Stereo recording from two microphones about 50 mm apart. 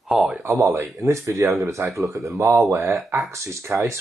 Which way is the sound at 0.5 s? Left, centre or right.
Right.